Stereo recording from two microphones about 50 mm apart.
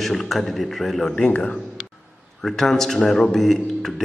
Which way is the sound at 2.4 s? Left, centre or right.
Centre.